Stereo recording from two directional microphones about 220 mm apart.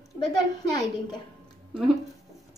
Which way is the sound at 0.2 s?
20° left (ahead or behind).